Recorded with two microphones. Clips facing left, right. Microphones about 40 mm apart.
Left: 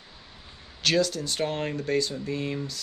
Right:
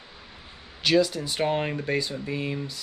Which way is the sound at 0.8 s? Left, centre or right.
Centre.